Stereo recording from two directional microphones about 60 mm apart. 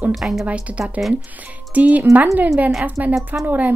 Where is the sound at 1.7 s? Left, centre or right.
Right.